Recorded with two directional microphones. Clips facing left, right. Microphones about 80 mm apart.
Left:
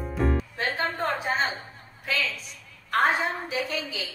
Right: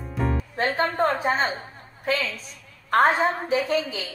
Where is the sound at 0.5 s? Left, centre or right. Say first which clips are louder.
Right 5 dB; right.